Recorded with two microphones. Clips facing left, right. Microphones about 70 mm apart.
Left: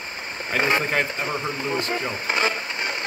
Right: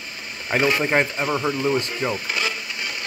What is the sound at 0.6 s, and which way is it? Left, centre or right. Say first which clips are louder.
Speech: right 1 dB; left.